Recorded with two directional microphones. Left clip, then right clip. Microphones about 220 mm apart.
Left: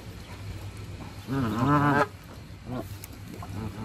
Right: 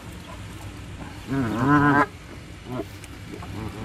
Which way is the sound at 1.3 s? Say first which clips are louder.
Right 4 dB; 20° left (ahead or behind).